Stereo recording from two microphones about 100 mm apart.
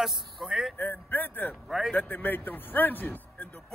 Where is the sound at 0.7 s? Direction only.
20° left (ahead or behind).